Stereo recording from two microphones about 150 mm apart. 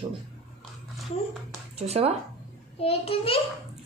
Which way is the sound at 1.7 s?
45° right (ahead or behind).